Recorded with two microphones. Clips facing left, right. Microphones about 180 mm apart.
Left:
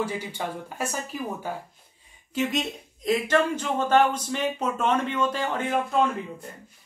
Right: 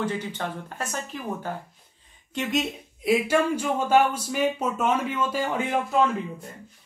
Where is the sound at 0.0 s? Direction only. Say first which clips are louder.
Right 1 dB; 10° left (ahead or behind); by 6.0 s 10° right (ahead or behind).